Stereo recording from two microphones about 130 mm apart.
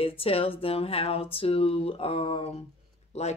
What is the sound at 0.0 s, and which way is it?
Speech, 45° left (ahead or behind).